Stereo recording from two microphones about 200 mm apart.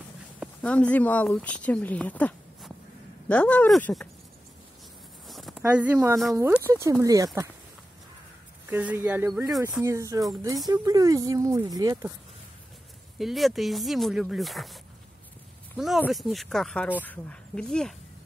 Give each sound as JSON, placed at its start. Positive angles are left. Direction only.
{"t": 0.4, "sound": "speech", "side_deg": 5}
{"t": 5.3, "sound": "a sound", "side_deg": 0}
{"t": 5.6, "sound": "speech", "side_deg": -10}
{"t": 8.6, "sound": "speech", "side_deg": -10}
{"t": 9.3, "sound": "speech", "side_deg": 0}
{"t": 9.6, "sound": "speech", "side_deg": -15}
{"t": 13.2, "sound": "speech", "side_deg": 0}